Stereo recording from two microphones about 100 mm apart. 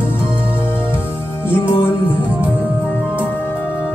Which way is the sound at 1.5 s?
25° left (ahead or behind).